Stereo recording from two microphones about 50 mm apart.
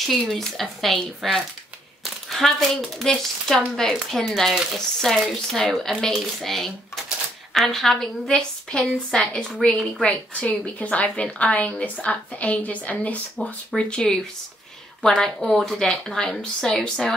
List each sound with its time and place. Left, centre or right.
0.0 s speech: centre
8.3 s speech: centre
10.0 s a woman's voice: left
13.7 s speech: centre